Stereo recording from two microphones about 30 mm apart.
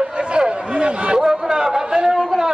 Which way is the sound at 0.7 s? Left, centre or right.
Right.